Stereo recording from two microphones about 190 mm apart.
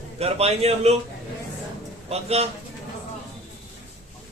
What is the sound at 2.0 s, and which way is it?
Speech, 30° right (ahead or behind).